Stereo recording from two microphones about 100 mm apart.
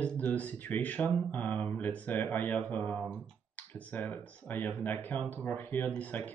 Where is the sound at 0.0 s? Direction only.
15° left (ahead or behind).